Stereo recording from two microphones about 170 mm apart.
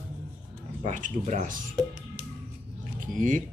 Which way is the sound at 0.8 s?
45° right (ahead or behind).